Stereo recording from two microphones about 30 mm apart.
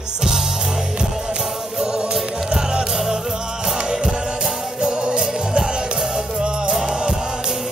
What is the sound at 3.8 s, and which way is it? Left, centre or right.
Music, right.